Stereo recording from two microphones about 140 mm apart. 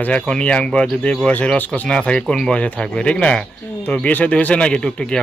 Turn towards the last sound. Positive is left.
turn(degrees=5)  # may be behind; listen again after turning